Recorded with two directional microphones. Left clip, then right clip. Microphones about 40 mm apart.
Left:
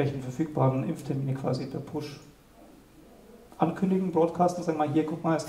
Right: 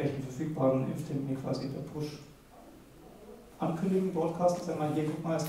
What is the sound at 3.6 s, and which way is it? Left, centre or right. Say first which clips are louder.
A man's voice: left 4 dB; left.